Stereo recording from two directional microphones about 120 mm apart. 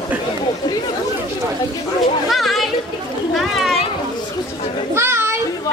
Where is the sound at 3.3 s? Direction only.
Centre (ahead or behind).